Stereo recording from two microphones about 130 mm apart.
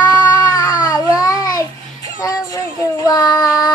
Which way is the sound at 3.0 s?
30° left (ahead or behind).